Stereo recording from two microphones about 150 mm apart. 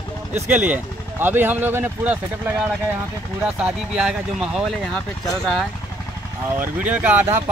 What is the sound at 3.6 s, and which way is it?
Speech, 5° right (ahead or behind).